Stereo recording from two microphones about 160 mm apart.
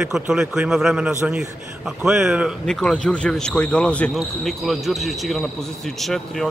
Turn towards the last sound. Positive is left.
turn(degrees=0)  # may be behind; listen again after turning